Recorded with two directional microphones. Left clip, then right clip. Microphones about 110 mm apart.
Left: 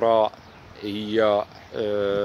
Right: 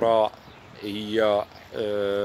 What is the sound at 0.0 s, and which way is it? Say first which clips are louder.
Speech: left 1 dB; 20° left (ahead or behind).